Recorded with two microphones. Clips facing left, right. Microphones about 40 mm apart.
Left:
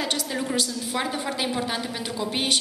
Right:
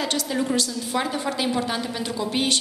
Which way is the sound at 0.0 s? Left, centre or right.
Centre.